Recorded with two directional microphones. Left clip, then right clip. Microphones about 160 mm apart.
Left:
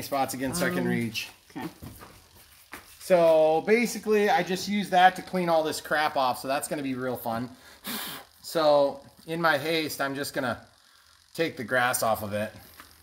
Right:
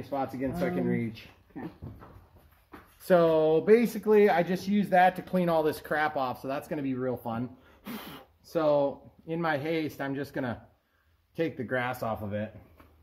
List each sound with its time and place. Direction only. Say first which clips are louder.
0.1 s speech: left 4 dB; 90° left
3.1 s speech: left 3 dB; 60° right (ahead or behind); by 5.9 s 45° right (ahead or behind)
5.9 s speech: left 4 dB; 20° right (ahead or behind)
6.4 s speech: left 4 dB; 5° right (ahead or behind); by 12.4 s 10° left (ahead or behind)